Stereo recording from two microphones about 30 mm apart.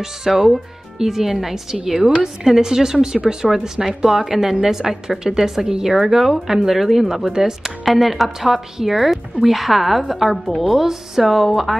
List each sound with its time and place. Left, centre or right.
0.2 s a woman's voice: centre
7.8 s speech: centre